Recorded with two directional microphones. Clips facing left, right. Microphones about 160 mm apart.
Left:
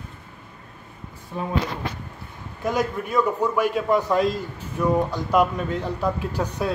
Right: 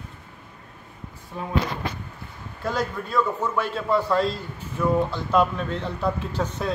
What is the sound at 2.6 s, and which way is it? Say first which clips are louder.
A man's voice: left 3 dB; 15° left (ahead or behind).